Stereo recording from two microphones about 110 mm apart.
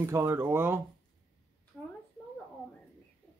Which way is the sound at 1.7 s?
10° left (ahead or behind).